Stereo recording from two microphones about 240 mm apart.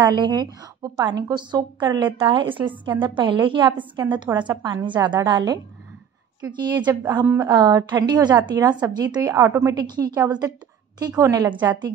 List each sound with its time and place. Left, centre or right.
0.0 s a woman's voice: centre